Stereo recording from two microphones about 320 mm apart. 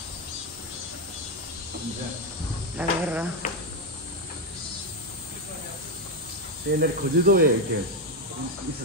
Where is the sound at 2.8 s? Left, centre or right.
Centre.